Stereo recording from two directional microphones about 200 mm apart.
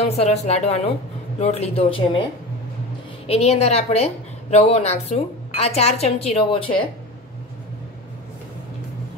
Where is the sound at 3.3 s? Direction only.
30° left (ahead or behind).